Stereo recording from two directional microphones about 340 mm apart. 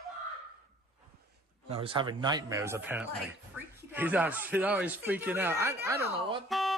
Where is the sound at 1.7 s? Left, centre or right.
Centre.